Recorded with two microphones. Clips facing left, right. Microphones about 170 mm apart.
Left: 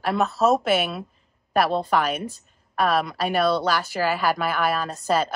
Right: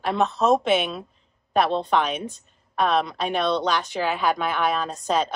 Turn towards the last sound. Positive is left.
turn(degrees=5)  # may be behind; listen again after turning